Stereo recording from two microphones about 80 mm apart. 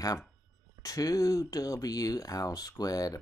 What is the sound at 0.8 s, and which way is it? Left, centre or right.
Speech, left.